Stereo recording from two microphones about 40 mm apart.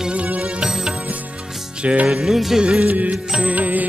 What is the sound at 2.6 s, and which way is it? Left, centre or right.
Music, centre.